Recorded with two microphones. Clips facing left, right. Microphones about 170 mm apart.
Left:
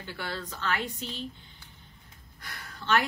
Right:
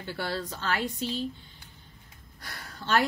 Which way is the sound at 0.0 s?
35° right (ahead or behind).